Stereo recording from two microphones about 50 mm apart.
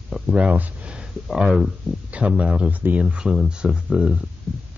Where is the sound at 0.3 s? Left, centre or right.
Right.